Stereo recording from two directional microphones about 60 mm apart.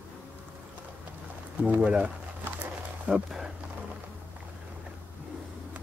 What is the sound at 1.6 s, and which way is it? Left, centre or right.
Speech, right.